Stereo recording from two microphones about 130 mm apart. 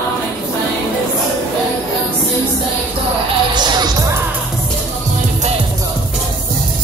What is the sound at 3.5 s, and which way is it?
Music, 35° right (ahead or behind).